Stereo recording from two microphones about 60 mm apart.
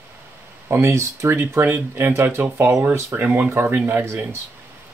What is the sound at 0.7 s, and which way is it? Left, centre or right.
Speech, right.